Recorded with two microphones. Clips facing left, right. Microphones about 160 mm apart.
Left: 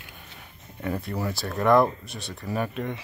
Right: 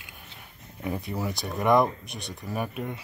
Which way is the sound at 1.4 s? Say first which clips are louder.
Left 2 dB; 10° right (ahead or behind).